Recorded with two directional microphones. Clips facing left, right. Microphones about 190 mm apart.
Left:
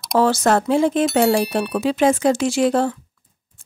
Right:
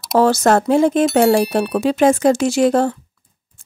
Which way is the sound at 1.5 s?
45° right (ahead or behind).